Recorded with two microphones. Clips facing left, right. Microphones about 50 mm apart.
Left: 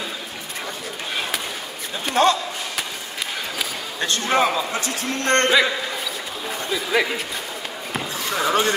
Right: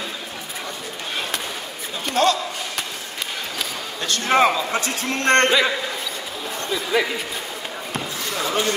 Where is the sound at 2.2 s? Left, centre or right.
Left.